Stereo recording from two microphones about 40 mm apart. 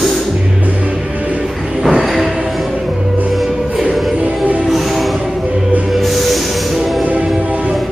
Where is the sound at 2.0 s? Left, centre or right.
Centre.